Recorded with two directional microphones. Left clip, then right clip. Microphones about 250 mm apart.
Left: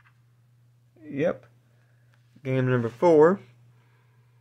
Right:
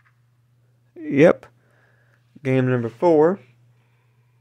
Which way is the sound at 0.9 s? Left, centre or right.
Right.